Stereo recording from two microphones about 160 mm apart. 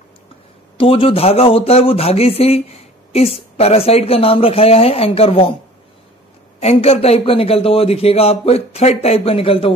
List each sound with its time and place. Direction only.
0.7 s a man's voice: 35° left (ahead or behind)
6.6 s a man's voice: 40° left (ahead or behind)